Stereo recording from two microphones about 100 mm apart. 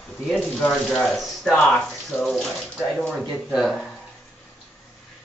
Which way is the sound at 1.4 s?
15° left (ahead or behind).